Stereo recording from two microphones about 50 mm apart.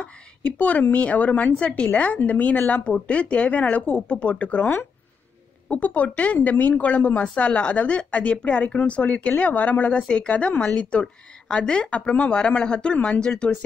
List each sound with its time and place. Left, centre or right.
0.0 s speech: left